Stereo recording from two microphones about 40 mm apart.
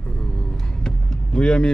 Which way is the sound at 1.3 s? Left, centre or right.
Left.